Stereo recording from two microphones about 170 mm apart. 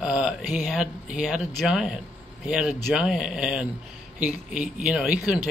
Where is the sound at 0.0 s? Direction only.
5° right (ahead or behind).